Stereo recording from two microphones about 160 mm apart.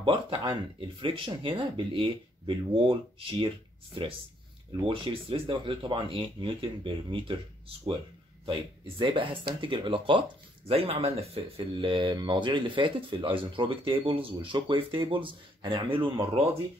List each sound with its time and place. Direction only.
0.0 s speech: 30° right (ahead or behind)
4.8 s speech: 30° right (ahead or behind)
8.5 s speech: 35° right (ahead or behind)